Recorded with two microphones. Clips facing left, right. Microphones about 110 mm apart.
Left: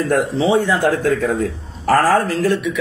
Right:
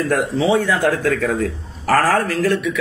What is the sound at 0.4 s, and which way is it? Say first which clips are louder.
A man's voice: even; 25° left (ahead or behind).